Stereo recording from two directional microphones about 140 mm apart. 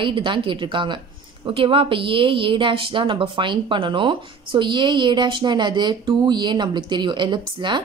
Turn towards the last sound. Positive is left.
turn(degrees=-35)  # may be behind; listen again after turning